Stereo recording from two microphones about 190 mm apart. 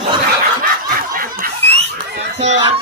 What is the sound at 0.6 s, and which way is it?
Snicker, 50° right (ahead or behind).